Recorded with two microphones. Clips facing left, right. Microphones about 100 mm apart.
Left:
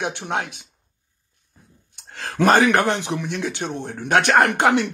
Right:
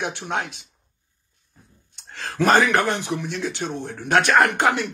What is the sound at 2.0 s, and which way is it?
Speech, 45° left (ahead or behind).